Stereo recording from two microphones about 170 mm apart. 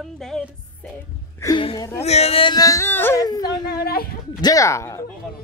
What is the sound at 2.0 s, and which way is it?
Speech, 40° left (ahead or behind).